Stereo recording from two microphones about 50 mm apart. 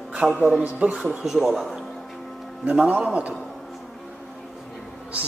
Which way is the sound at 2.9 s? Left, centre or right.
Right.